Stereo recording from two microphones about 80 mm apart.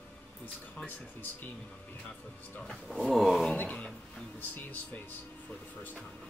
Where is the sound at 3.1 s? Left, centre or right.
Centre.